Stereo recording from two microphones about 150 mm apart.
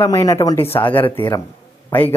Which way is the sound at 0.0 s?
20° left (ahead or behind).